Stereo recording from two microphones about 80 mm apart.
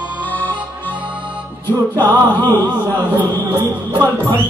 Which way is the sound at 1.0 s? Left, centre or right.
Centre.